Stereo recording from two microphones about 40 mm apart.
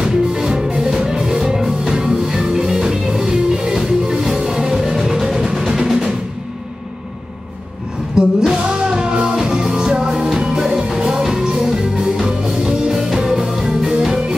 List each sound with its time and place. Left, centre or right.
0.0 s music: centre
8.2 s music: centre